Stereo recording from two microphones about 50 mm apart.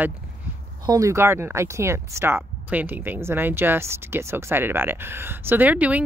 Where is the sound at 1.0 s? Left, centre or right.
Right.